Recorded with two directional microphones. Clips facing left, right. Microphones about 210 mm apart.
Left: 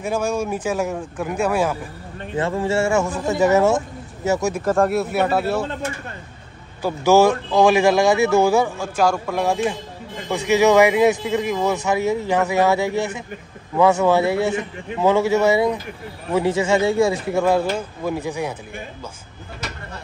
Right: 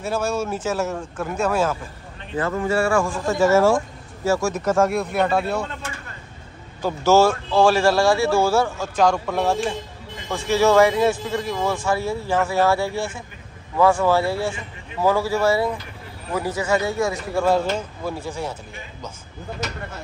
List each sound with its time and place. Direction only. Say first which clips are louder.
0.0 s speech: left 2 dB; 15° left (ahead or behind)
2.3 s speech: left 1 dB; 30° left (ahead or behind)
4.6 s speech: left 1 dB; centre (ahead or behind)
6.8 s speech: left 2 dB; 15° left (ahead or behind)